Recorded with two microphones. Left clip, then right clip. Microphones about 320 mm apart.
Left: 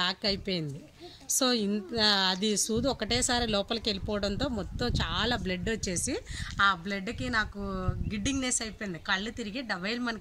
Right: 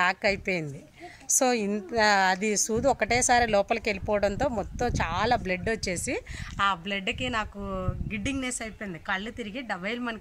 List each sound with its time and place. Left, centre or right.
0.1 s speech: centre
1.3 s a sound: centre
1.9 s a woman's voice: centre